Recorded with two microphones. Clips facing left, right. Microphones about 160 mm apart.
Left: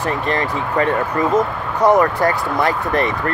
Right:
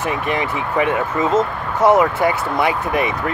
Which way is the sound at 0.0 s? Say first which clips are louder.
Left 1 dB; 15° right (ahead or behind).